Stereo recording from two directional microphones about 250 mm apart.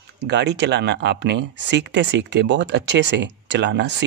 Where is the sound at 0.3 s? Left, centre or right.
Right.